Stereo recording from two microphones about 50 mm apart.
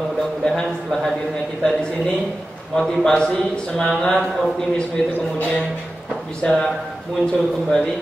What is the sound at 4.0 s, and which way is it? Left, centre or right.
Speech, centre.